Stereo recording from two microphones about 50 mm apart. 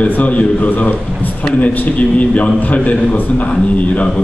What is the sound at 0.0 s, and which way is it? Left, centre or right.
A man's voice, left.